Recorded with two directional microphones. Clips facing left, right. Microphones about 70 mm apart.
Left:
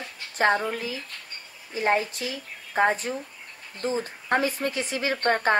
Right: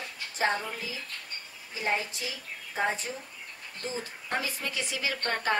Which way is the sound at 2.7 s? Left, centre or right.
Left.